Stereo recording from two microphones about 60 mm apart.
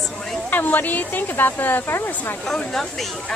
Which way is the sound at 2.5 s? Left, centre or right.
Centre.